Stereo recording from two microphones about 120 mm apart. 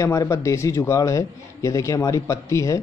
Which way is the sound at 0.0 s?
25° left (ahead or behind).